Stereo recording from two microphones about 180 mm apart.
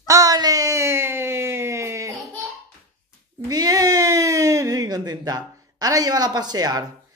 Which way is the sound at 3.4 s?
20° right (ahead or behind).